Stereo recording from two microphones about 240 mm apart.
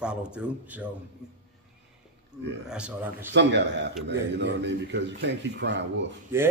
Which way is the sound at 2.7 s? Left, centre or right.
Centre.